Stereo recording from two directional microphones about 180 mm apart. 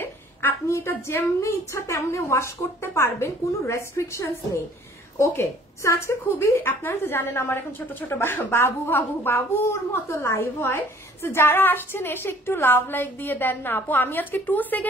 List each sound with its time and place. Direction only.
0.0 s a woman's voice: 10° left (ahead or behind)